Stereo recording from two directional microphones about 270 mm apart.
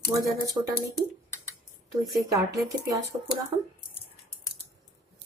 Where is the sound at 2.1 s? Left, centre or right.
Centre.